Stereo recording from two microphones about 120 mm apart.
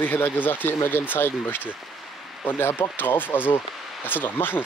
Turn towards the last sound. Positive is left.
turn(degrees=15)  # may be behind; listen again after turning